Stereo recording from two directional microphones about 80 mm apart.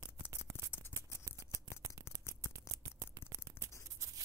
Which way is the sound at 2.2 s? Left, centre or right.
Left.